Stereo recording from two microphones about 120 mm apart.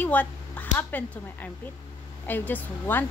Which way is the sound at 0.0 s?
15° left (ahead or behind).